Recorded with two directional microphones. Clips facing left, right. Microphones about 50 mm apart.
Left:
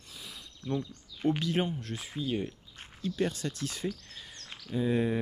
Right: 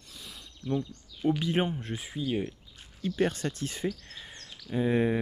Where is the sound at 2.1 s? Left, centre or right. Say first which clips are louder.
Right 2 dB; centre.